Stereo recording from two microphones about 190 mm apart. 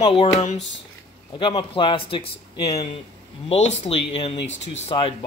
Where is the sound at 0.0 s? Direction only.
30° left (ahead or behind).